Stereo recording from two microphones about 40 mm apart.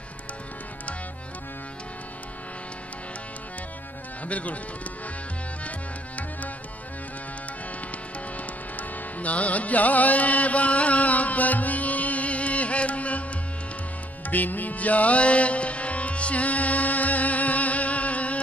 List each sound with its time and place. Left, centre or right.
4.3 s speech: left
8.4 s carnatic music: left
14.2 s music: left